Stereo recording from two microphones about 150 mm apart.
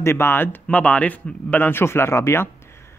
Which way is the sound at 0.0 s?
15° left (ahead or behind).